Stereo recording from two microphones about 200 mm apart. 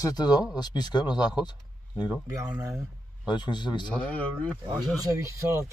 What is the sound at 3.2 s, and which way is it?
Speech, 20° left (ahead or behind).